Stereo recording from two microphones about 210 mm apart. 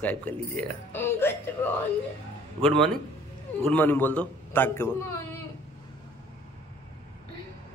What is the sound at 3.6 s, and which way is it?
A man's voice, 10° left (ahead or behind).